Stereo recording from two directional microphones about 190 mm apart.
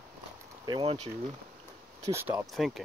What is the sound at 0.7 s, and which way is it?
Speech, 30° right (ahead or behind).